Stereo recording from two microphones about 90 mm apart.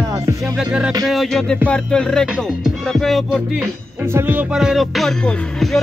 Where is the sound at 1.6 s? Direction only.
10° left (ahead or behind).